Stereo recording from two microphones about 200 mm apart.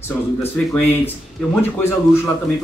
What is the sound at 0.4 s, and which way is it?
Speech, 10° left (ahead or behind).